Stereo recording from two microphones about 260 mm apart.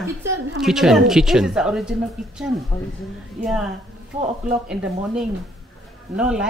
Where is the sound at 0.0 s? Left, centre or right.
Centre.